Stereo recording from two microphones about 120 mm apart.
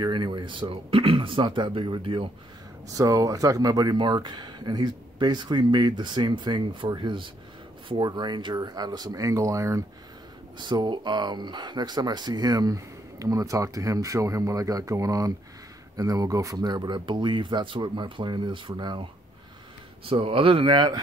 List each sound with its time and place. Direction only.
0.0 s speech: 40° right (ahead or behind)
2.9 s speech: 30° right (ahead or behind)
10.6 s speech: 40° right (ahead or behind)
20.1 s speech: 50° right (ahead or behind)